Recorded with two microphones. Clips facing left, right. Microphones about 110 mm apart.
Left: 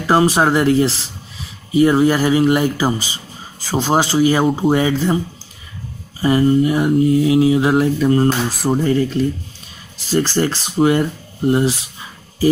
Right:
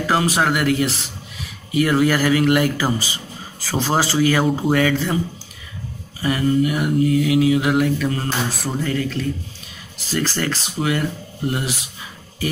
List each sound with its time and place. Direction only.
0.0 s speech: 30° left (ahead or behind)
3.7 s mantra: 20° left (ahead or behind)
6.2 s mantra: 30° left (ahead or behind)
10.1 s speech: 30° left (ahead or behind)